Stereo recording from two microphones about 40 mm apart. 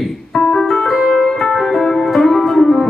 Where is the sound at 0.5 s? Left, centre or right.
Centre.